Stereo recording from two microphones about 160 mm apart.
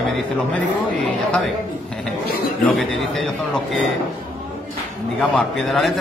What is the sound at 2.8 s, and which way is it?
A man's voice, centre (ahead or behind).